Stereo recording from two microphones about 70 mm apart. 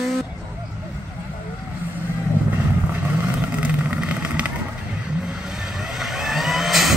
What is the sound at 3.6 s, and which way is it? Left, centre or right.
Vehicle, right.